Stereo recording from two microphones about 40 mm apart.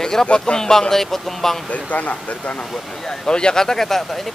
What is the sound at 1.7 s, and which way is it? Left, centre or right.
Speech, left.